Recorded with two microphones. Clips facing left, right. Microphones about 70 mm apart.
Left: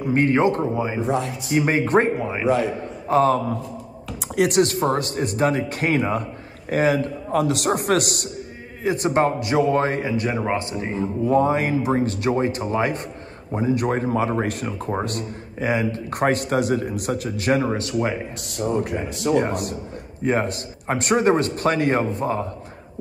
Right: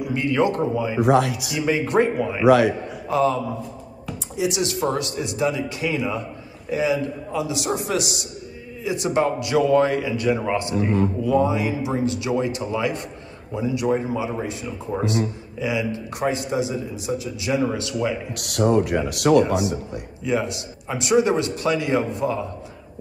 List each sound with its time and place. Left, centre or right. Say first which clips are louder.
0.0 s a man's voice: left 3 dB; left
1.0 s speech: right 5 dB; right
1.6 s a man's voice: left 1 dB; left
2.4 s speech: right 6 dB; right
3.1 s a man's voice: left 3 dB; left
4.7 s a man's voice: left 2 dB; left
8.8 s speech: left 2 dB; left
11.2 s speech: left 4 dB; left
13.9 s speech: left 3 dB; left
14.9 s a man's voice: right 5 dB; left
17.6 s speech: even; left
18.4 s speech: right 6 dB; right
19.4 s a man's voice: right 3 dB; left